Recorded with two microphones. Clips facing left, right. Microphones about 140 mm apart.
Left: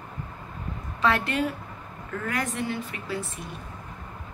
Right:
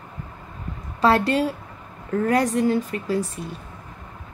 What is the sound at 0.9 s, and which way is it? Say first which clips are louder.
A woman's voice: right 6 dB; 35° right (ahead or behind).